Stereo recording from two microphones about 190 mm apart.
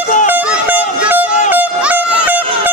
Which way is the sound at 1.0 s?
10° right (ahead or behind).